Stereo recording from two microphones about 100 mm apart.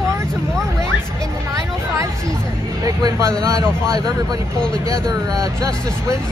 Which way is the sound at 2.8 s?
35° right (ahead or behind).